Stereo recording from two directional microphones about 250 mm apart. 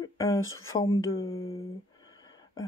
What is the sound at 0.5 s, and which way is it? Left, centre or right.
Speech, left.